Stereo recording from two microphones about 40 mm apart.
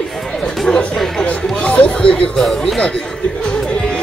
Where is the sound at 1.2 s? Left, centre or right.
Left.